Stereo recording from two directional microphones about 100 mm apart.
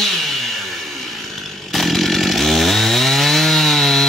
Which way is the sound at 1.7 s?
Centre (ahead or behind).